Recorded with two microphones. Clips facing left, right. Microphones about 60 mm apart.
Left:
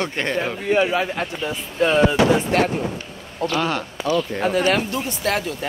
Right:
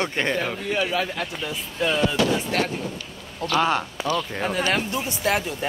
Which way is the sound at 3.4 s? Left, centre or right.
Centre.